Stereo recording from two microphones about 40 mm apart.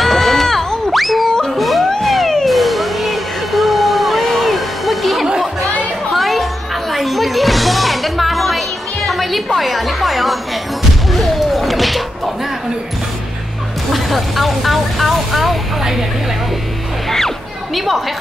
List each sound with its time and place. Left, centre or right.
0.0 s a sound: centre
0.6 s music: centre
0.9 s music: centre
1.3 s music: centre
1.6 s music: centre
2.0 s cat: centre
2.4 s music: centre
13.8 s vehicle: centre
17.7 s a sound: centre